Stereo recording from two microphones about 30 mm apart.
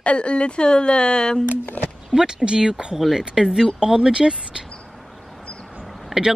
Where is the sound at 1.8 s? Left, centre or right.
Left.